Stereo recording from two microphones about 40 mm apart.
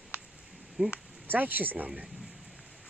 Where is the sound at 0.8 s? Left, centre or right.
Right.